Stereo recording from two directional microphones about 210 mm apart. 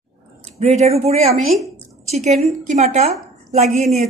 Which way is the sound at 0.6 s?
30° right (ahead or behind).